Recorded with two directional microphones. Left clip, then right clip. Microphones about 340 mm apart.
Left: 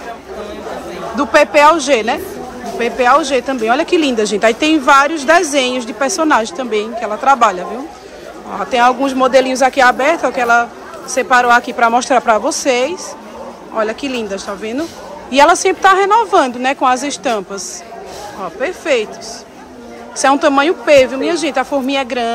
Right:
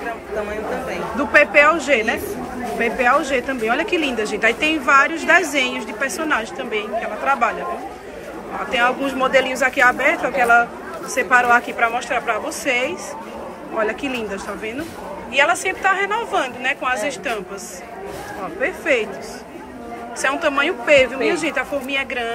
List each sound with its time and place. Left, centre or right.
1.1 s speech: centre
8.7 s speech: centre
18.6 s speech: centre
20.2 s speech: centre